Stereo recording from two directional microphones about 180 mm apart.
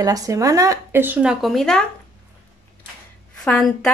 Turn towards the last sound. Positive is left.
turn(degrees=5)  # may be behind; listen again after turning